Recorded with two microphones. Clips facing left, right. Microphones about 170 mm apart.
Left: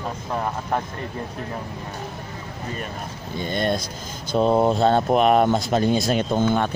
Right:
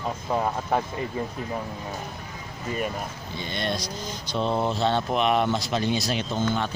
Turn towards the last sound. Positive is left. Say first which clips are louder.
# left 6 dB
turn(degrees=50)  # may be behind; listen again after turning